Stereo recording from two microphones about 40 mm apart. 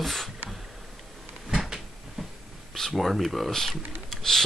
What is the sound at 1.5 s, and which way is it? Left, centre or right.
Cupboard open or close, centre.